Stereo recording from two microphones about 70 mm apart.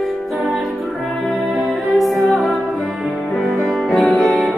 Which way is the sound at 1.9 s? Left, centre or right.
Centre.